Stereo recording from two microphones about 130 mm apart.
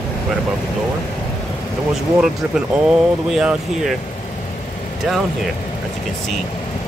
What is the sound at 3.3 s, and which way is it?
Speech, 5° right (ahead or behind).